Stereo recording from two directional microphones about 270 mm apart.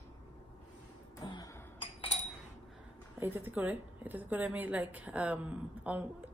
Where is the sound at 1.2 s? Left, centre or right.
Centre.